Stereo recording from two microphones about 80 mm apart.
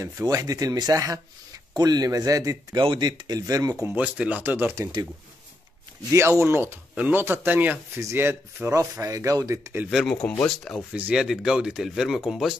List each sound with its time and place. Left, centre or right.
0.0 s speech: right
2.8 s speech: right
3.8 s speech: centre
6.1 s speech: right
9.0 s speech: right
9.8 s speech: centre
10.9 s speech: centre
11.1 s speech: centre